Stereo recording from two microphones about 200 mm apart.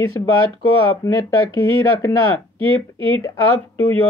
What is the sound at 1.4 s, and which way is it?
Speech, 90° left.